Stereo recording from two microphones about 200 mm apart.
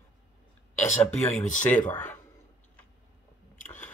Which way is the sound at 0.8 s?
30° left (ahead or behind).